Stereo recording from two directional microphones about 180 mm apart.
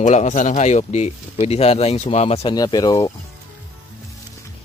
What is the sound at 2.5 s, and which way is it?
Speech, 20° left (ahead or behind).